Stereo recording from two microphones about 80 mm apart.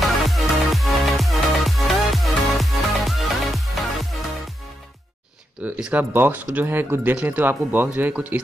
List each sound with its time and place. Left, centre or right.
0.0 s music: centre
5.6 s a sound: centre
6.1 s speech: right